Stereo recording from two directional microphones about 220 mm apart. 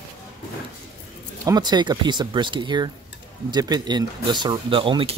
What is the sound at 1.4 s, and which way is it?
Speech, 20° right (ahead or behind).